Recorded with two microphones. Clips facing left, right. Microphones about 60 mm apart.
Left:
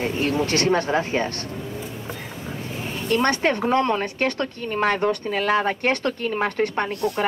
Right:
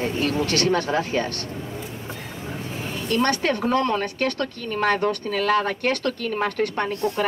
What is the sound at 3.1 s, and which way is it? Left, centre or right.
A woman's voice, left.